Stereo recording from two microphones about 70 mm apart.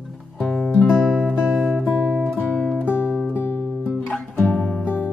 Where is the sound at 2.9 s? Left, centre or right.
Left.